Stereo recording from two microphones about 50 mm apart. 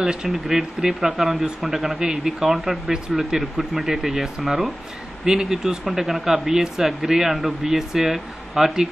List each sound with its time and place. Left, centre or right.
0.0 s speech: centre
0.3 s speech: centre
5.2 s speech: centre